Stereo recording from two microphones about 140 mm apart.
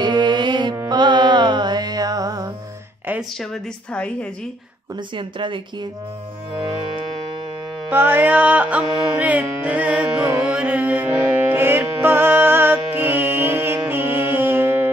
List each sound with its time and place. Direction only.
0.0 s music: 30° right (ahead or behind)
3.3 s a woman's voice: 5° left (ahead or behind)
5.1 s speech: 35° right (ahead or behind)
7.9 s music: 15° right (ahead or behind)